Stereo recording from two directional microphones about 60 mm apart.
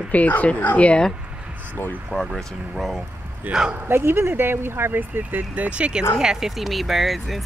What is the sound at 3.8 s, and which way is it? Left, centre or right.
Speech, right.